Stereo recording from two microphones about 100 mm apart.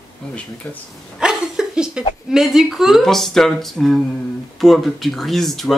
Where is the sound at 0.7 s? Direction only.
15° left (ahead or behind).